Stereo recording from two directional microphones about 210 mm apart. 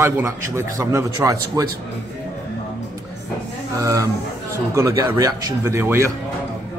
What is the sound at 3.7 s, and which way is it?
A man's voice, 15° right (ahead or behind).